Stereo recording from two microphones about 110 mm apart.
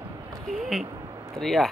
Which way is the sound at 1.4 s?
5° left (ahead or behind).